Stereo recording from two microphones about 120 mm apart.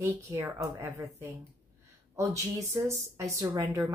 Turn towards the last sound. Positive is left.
turn(degrees=-20)  # may be behind; listen again after turning